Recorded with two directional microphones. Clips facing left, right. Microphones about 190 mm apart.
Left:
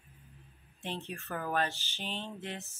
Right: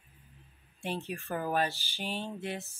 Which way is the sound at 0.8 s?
10° right (ahead or behind).